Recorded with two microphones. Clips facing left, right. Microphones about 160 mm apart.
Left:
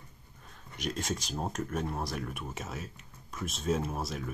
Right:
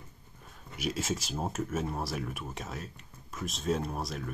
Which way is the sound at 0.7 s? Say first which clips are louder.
Right 2 dB; 5° right (ahead or behind).